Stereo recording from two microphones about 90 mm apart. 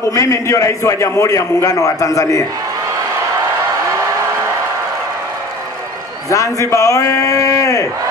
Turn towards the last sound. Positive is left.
turn(degrees=35)  # may be behind; listen again after turning